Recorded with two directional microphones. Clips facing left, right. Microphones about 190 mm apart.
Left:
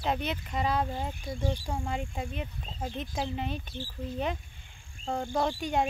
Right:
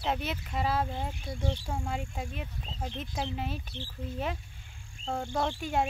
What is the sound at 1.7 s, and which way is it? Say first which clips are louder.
Speech: left 1 dB; centre (ahead or behind).